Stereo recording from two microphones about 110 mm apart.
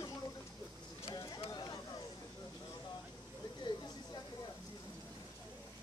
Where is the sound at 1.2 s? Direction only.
40° left (ahead or behind).